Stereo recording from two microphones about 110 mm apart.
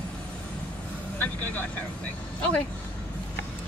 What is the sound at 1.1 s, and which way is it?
Vehicle, 15° left (ahead or behind).